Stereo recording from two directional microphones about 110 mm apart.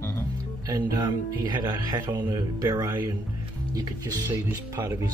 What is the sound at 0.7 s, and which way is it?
Speech, 35° right (ahead or behind).